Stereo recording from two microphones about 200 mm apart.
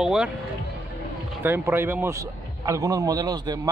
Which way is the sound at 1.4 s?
10° right (ahead or behind).